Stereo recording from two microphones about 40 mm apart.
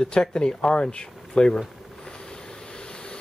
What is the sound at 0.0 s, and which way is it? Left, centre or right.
Speech, left.